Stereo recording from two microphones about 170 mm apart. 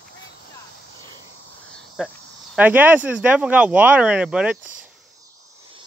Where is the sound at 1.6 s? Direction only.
5° left (ahead or behind).